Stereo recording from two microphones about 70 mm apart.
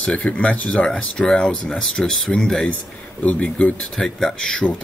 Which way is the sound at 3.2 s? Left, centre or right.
Left.